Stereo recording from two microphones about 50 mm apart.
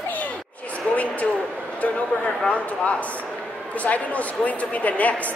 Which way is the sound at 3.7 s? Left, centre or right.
Left.